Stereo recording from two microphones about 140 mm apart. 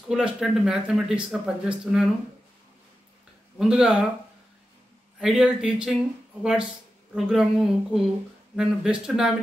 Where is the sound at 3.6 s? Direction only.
5° right (ahead or behind).